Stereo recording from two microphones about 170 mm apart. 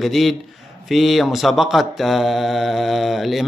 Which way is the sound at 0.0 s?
Centre (ahead or behind).